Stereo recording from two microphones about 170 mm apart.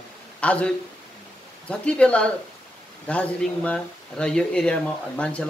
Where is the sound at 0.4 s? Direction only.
5° left (ahead or behind).